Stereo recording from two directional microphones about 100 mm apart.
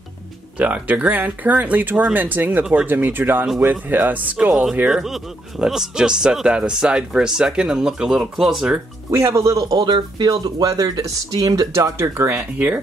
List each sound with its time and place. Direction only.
0.6 s speech: 15° right (ahead or behind)
9.1 s speech: 30° right (ahead or behind)